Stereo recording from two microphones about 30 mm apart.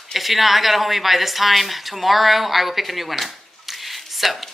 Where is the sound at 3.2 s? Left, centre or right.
Centre.